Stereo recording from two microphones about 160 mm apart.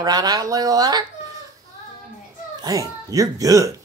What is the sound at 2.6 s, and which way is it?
A man's voice, 20° right (ahead or behind).